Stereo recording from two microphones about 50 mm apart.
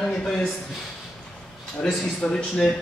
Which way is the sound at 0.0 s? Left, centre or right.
Centre.